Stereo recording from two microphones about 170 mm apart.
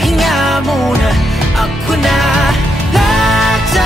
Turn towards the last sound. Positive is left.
turn(degrees=0)  # may be behind; listen again after turning